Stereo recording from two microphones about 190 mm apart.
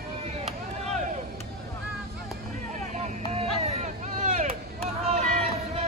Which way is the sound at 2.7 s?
40° right (ahead or behind).